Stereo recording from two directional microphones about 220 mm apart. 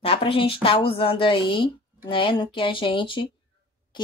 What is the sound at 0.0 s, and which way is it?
Child singing, 25° left (ahead or behind).